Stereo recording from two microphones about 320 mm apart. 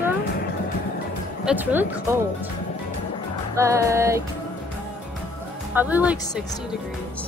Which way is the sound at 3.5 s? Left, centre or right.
Centre.